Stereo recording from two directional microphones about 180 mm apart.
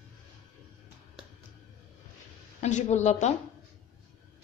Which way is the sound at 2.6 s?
40° left (ahead or behind).